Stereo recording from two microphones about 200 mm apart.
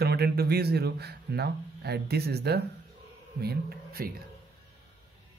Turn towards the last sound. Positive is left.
turn(degrees=-50)  # may be behind; listen again after turning